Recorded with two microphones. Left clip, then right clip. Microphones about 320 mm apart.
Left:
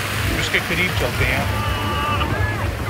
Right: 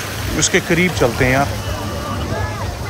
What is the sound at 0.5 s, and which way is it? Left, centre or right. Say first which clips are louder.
Speech: right 5 dB; right.